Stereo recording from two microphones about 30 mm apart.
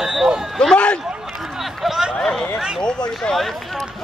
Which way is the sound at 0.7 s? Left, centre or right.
Left.